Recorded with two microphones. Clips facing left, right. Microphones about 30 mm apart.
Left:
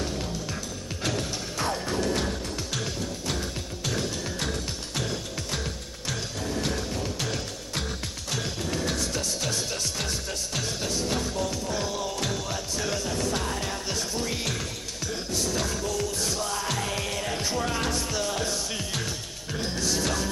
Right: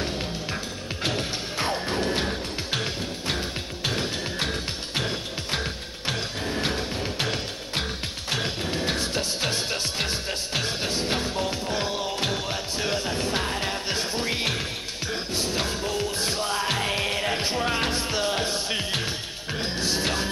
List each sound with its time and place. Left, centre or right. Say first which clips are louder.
0.0 s music: right 2 dB; right